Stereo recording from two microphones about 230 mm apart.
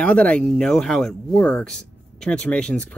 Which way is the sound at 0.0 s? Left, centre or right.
Centre.